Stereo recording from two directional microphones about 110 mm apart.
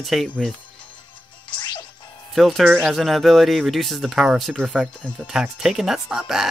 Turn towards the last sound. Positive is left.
turn(degrees=-5)  # may be behind; listen again after turning